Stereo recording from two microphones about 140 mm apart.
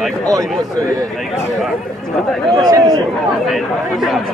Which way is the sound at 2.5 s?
25° right (ahead or behind).